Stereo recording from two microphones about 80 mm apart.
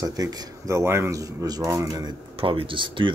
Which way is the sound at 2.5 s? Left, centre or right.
Right.